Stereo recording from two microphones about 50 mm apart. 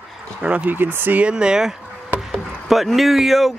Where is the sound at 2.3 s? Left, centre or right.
Centre.